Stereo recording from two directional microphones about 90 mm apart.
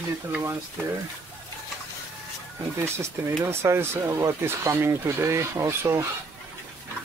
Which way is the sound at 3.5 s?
30° right (ahead or behind).